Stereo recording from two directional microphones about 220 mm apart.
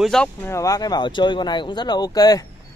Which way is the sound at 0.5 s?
15° left (ahead or behind).